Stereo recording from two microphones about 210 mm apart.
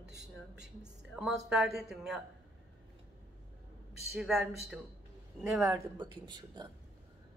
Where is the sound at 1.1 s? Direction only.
Centre (ahead or behind).